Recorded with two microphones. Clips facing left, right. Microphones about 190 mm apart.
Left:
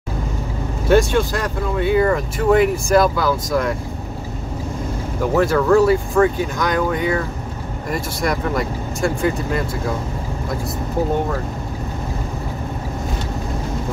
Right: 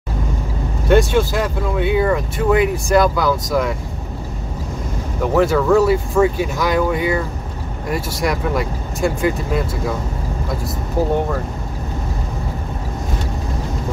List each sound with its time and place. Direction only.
0.8 s speech: centre (ahead or behind)
5.2 s speech: centre (ahead or behind)